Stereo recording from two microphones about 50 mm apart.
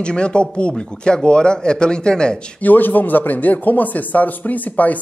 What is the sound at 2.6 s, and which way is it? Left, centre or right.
A man's voice, left.